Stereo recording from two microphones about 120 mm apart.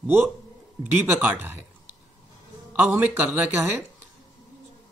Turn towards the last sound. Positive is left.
turn(degrees=-15)  # may be behind; listen again after turning